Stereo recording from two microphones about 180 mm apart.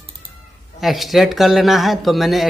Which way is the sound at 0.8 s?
Centre (ahead or behind).